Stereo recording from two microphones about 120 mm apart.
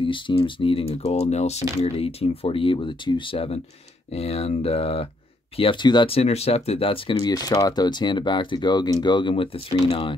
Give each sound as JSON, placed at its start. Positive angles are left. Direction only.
{"t": 0.0, "sound": "speech", "side_deg": 40}
{"t": 5.6, "sound": "speech", "side_deg": 40}
{"t": 6.1, "sound": "speech", "side_deg": 60}
{"t": 7.2, "sound": "speech", "side_deg": 35}